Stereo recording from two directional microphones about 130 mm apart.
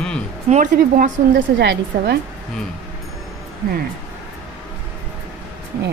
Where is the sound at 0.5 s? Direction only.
80° right.